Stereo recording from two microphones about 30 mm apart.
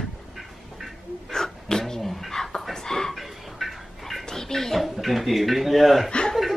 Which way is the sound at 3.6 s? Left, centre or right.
Centre.